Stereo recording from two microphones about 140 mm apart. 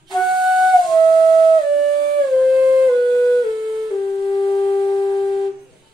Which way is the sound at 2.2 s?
Centre (ahead or behind).